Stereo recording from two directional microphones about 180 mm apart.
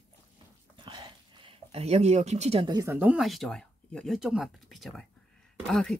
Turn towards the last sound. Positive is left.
turn(degrees=5)  # may be behind; listen again after turning